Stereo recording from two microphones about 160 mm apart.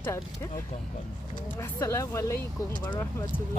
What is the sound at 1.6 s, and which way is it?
Speech, 15° left (ahead or behind).